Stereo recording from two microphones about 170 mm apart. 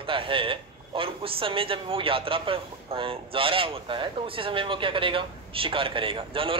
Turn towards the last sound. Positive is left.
turn(degrees=-30)  # may be behind; listen again after turning